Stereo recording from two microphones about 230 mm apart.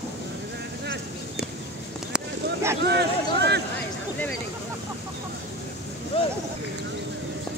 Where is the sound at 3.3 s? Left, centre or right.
Right.